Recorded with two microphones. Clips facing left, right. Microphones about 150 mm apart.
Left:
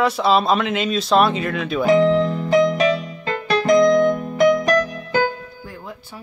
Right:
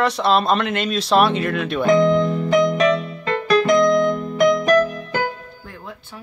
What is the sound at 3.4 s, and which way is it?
Keyboard, 35° left (ahead or behind).